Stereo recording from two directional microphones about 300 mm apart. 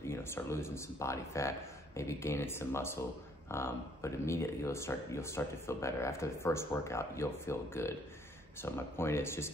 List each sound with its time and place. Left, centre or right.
0.0 s speech: centre